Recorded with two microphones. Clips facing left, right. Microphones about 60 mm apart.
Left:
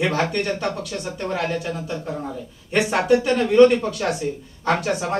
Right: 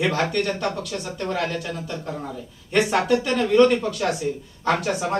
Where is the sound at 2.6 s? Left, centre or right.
Centre.